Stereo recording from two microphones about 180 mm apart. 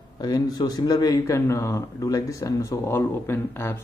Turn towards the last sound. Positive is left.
turn(degrees=10)  # may be behind; listen again after turning